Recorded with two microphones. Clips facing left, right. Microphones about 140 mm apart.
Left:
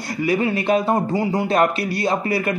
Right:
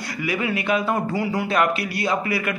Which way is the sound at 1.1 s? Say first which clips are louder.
Left 3 dB; 25° left (ahead or behind).